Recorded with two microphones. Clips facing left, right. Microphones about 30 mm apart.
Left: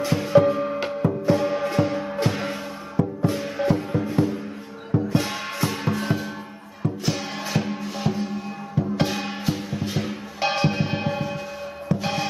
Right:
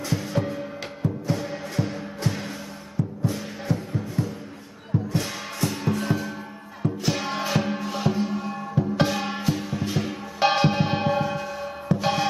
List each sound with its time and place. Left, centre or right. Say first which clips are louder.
0.0 s music: left 9 dB; left
5.1 s music: left 4 dB; left
5.9 s music: even; centre
6.8 s music: even; centre